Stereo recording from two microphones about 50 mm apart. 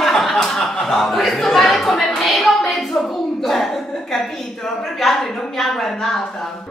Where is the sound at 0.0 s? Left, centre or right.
Centre.